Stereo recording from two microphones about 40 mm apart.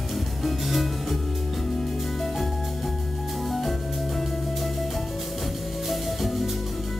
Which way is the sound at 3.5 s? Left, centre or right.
Centre.